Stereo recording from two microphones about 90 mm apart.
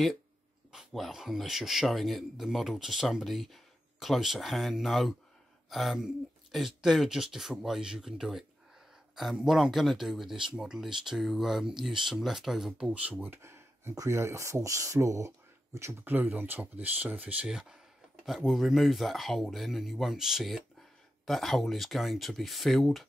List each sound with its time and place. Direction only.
0.7 s speech: centre (ahead or behind)
13.2 s speech: 25° right (ahead or behind)
16.1 s speech: 20° right (ahead or behind); by 23.0 s centre (ahead or behind)